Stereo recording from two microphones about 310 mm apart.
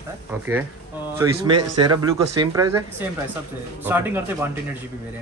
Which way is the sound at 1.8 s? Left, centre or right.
Right.